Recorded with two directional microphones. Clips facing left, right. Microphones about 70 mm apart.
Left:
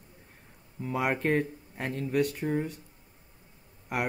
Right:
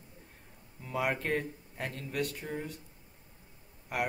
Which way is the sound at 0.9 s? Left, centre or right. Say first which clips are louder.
Left 4 dB; left.